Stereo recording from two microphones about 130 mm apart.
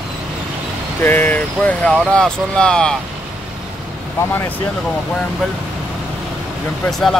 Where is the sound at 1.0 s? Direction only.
15° left (ahead or behind).